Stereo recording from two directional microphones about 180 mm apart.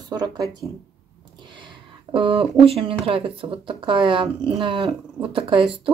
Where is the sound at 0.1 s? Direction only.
20° right (ahead or behind).